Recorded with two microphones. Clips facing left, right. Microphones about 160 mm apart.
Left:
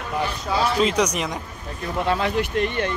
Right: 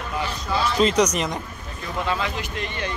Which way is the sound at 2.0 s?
60° left (ahead or behind).